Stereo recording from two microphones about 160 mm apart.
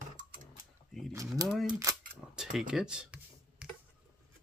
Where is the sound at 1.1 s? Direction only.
20° right (ahead or behind).